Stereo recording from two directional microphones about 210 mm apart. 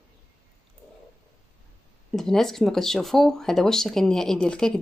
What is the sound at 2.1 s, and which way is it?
Speech, centre (ahead or behind).